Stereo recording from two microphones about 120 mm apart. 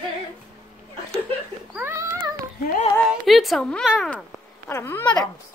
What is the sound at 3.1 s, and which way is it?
A woman's voice, centre (ahead or behind).